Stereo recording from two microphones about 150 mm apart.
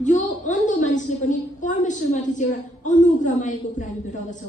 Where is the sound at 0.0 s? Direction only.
55° left (ahead or behind).